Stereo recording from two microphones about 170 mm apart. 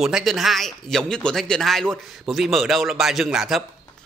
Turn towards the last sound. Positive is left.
turn(degrees=0)  # may be behind; listen again after turning